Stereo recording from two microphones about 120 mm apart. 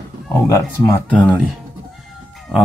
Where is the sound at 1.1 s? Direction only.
10° left (ahead or behind).